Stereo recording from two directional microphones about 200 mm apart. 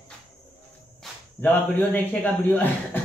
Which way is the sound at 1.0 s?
10° left (ahead or behind).